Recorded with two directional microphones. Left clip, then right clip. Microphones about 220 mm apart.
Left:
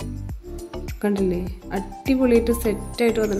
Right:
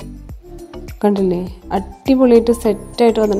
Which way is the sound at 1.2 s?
25° right (ahead or behind).